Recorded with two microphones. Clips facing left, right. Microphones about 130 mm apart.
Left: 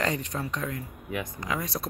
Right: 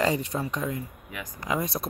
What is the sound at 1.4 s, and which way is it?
Speech, 20° right (ahead or behind).